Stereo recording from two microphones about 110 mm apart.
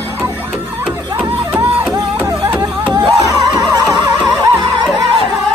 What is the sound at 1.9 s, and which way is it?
Music, 25° right (ahead or behind).